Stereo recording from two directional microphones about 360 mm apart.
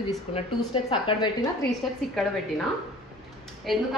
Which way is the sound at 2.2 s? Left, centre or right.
Centre.